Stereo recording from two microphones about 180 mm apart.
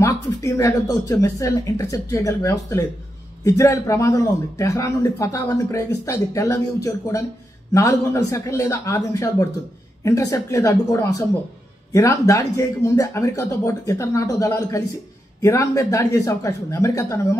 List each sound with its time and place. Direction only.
0.0 s speech: 15° left (ahead or behind)